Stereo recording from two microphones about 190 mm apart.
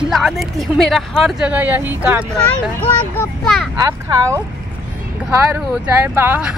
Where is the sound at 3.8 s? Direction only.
15° right (ahead or behind).